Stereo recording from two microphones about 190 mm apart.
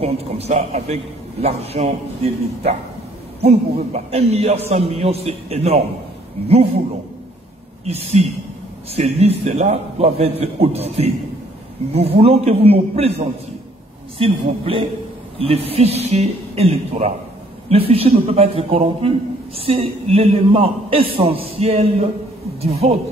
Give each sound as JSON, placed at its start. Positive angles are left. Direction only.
{"t": 0.0, "sound": "a man's voice", "side_deg": -30}
{"t": 7.8, "sound": "a man's voice", "side_deg": -35}